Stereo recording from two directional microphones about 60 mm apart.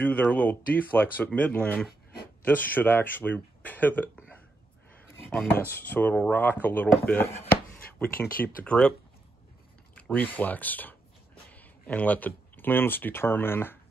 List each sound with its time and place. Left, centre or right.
0.0 s speech: left
5.5 s speech: left
10.1 s speech: left